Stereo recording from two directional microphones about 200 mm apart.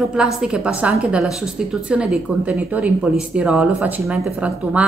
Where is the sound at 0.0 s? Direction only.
Centre (ahead or behind).